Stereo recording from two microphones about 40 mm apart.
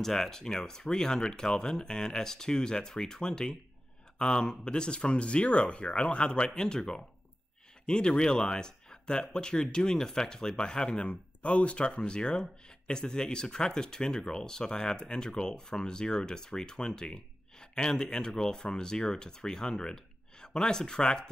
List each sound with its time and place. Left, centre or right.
0.0 s speech: centre